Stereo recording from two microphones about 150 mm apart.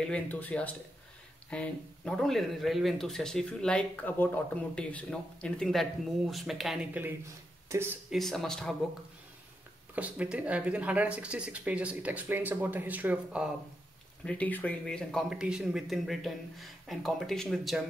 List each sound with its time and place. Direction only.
0.0 s speech: 10° left (ahead or behind); by 7.8 s 20° right (ahead or behind)
8.1 s speech: centre (ahead or behind)
9.9 s speech: 10° right (ahead or behind)
14.2 s speech: 10° left (ahead or behind)
15.2 s speech: 5° right (ahead or behind)